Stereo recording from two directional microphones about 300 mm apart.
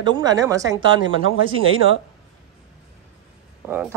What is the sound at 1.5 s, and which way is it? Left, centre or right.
Speech, right.